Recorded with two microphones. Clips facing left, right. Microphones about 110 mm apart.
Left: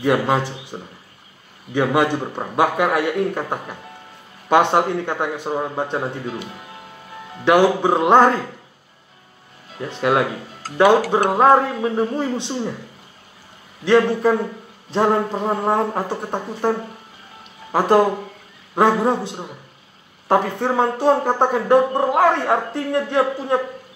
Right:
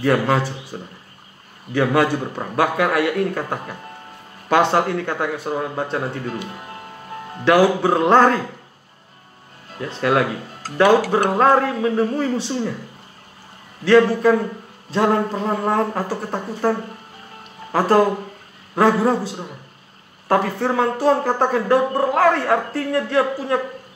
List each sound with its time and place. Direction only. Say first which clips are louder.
0.0 s speech: even; 15° left (ahead or behind)
7.4 s speech: even; 15° left (ahead or behind)
9.8 s speech: even; 15° left (ahead or behind)
14.9 s speech: even; 20° left (ahead or behind)